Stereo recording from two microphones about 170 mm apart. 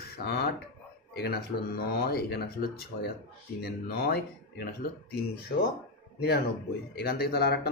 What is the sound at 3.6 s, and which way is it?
Speech, 70° left (ahead or behind).